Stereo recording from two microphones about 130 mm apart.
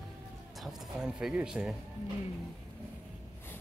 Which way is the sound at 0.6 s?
5° right (ahead or behind).